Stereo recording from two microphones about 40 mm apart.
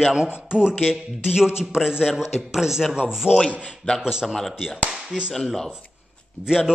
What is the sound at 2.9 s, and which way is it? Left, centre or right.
A man's voice, centre.